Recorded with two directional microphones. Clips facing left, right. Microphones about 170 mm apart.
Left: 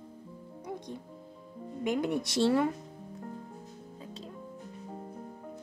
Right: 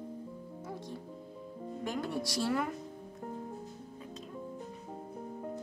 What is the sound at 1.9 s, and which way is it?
Speech, 20° left (ahead or behind).